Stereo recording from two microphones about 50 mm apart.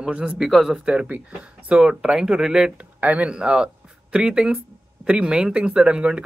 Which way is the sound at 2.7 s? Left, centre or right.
Right.